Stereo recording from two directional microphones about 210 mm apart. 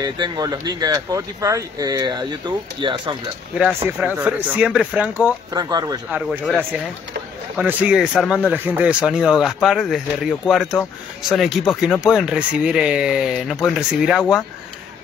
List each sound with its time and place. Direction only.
0.0 s speech: 20° right (ahead or behind)
3.5 s speech: 5° right (ahead or behind)
5.2 s speech: 15° right (ahead or behind)
6.1 s speech: 5° right (ahead or behind)
7.5 s speech: 5° right (ahead or behind)